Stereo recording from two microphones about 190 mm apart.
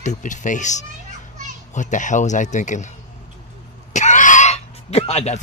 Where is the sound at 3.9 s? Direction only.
40° left (ahead or behind).